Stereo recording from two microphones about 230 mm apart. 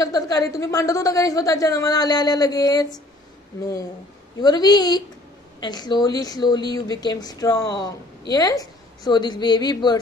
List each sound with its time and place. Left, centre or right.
0.0 s a woman's voice: centre
4.4 s a woman's voice: centre